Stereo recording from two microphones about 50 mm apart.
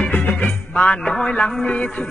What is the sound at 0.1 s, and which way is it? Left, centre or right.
Music, left.